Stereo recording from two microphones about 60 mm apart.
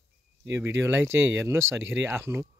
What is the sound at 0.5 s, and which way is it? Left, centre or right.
Speech, right.